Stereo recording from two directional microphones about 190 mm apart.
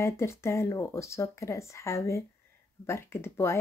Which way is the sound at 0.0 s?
15° left (ahead or behind).